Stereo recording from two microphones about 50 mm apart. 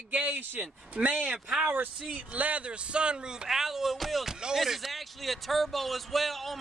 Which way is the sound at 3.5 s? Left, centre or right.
Centre.